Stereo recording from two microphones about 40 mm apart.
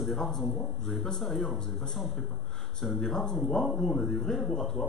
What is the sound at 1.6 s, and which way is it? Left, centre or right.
Speech, centre.